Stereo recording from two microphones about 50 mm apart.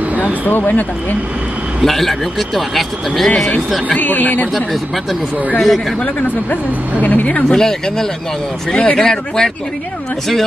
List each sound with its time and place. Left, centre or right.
0.1 s a sound: right
0.5 s speech: left
1.9 s a man's voice: centre
3.9 s speech: left
5.6 s a man's voice: centre
6.5 s speech: left
7.4 s speech: centre